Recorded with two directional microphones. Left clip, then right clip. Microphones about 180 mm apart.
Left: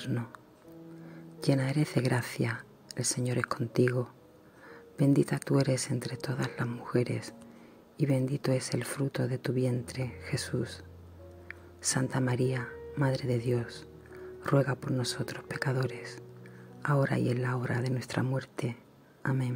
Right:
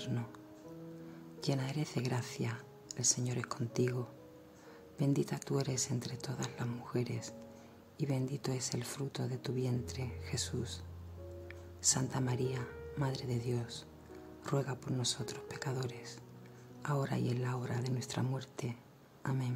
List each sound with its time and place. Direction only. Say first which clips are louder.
1.4 s speech: left 9 dB; 15° left (ahead or behind)
11.4 s music: even; 10° left (ahead or behind)
12.1 s speech: left 7 dB; 15° left (ahead or behind)